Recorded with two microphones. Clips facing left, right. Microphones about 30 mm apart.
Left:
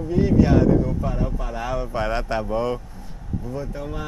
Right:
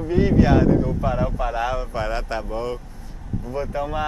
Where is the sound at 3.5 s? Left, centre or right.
Right.